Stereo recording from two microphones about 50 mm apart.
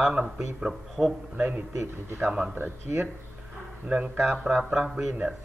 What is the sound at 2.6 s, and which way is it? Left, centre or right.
Speech, right.